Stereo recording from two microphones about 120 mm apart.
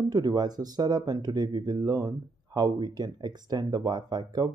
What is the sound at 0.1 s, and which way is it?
Speech, 35° right (ahead or behind).